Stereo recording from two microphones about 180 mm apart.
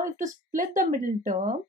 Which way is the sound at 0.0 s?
45° right (ahead or behind).